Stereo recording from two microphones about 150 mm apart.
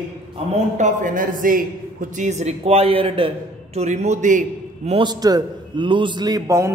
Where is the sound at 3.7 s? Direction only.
50° right (ahead or behind).